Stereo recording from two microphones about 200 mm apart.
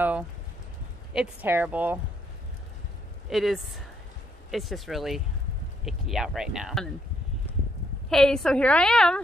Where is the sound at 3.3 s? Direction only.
Centre (ahead or behind).